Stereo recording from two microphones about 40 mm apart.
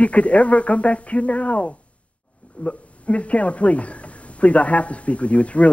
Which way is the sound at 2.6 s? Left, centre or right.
Left.